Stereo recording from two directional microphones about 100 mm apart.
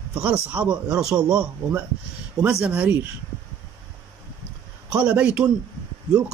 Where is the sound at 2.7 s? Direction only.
20° right (ahead or behind).